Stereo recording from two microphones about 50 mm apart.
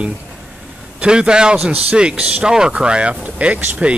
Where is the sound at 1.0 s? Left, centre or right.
Centre.